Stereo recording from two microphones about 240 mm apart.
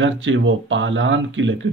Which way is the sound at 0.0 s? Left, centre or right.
Right.